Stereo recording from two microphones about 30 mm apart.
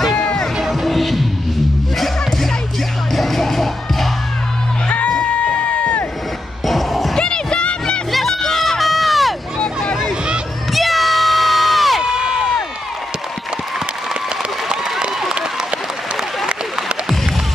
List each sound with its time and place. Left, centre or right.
0.8 s music: centre
3.2 s music: centre
4.8 s music: left
5.2 s a sound: left
6.6 s music: centre
7.2 s a sound: left
8.3 s music: centre
8.8 s a sound: centre
10.7 s crowd: centre
12.0 s crowd: right